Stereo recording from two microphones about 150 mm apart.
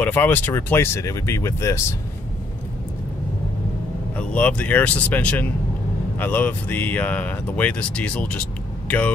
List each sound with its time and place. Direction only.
0.0 s speech: 15° left (ahead or behind)
4.2 s speech: 10° left (ahead or behind)